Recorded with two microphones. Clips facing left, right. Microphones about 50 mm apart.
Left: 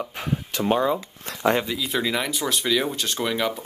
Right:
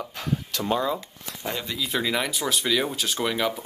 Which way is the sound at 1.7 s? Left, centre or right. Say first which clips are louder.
Left 1 dB; centre.